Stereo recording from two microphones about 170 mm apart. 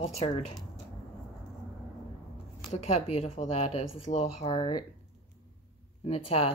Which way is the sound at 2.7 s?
35° left (ahead or behind).